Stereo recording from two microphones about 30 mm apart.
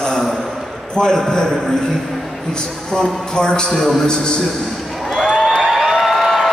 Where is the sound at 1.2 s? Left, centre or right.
Left.